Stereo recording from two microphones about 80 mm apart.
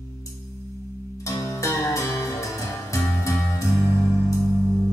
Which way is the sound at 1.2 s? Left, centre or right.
Left.